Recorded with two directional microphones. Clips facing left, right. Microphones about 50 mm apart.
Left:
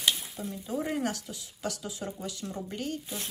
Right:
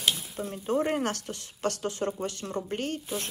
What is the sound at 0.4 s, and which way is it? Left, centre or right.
Speech, right.